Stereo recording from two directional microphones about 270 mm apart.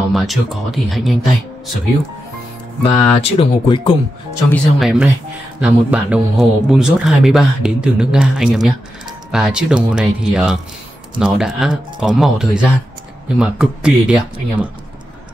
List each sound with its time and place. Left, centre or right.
0.1 s a man's voice: centre
2.8 s speech: left
4.5 s a man's voice: centre